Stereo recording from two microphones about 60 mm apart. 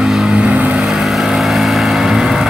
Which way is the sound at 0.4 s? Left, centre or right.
Right.